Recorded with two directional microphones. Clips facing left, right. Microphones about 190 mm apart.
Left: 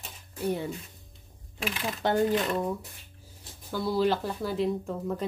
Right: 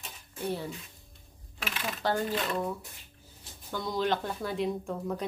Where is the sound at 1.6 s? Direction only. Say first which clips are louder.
Left 4 dB; 20° left (ahead or behind).